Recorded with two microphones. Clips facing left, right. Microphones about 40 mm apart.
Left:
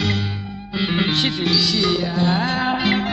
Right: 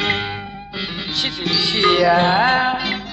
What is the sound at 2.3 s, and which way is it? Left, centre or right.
Music, right.